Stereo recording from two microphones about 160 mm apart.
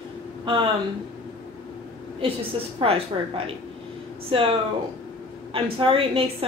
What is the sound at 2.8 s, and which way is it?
Speech, 35° right (ahead or behind).